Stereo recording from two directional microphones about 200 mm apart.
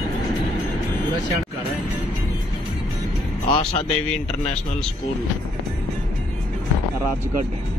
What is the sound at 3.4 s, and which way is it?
Speech, 25° left (ahead or behind).